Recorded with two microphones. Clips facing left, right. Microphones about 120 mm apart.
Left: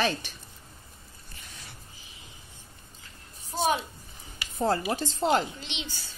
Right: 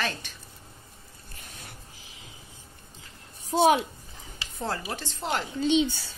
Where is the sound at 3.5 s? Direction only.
70° right (ahead or behind).